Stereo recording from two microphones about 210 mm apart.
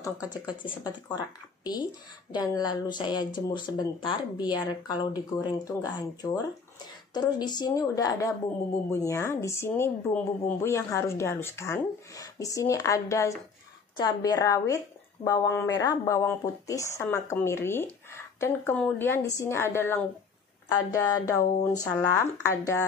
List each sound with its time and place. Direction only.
0.0 s speech: 15° left (ahead or behind)